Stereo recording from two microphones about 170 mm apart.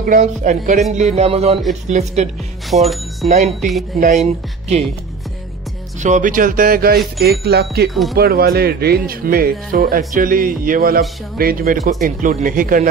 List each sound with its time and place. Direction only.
0.0 s speech: 50° right (ahead or behind)
2.7 s speech: centre (ahead or behind)
5.9 s speech: 45° right (ahead or behind); by 7.9 s 65° right (ahead or behind)
7.9 s speech: centre (ahead or behind)
8.2 s speech: 65° right (ahead or behind)